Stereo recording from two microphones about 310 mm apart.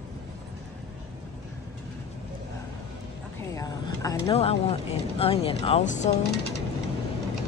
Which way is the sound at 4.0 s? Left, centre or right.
Centre.